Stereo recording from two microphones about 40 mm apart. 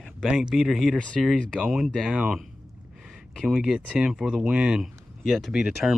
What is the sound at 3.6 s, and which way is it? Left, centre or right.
Speech, centre.